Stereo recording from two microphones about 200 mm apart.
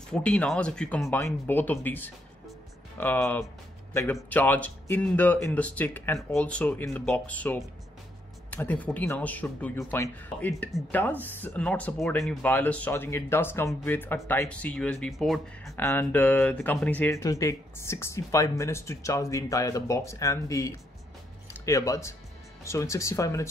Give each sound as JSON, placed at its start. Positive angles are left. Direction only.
{"t": 0.1, "sound": "speech", "side_deg": 5}
{"t": 15.7, "sound": "speech", "side_deg": 15}